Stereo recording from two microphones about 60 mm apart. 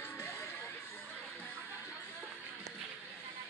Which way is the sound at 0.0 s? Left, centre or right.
Left.